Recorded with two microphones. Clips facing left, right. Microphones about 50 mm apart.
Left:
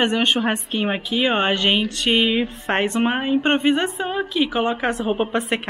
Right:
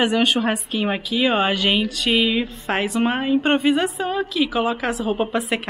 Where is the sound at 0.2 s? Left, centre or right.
Centre.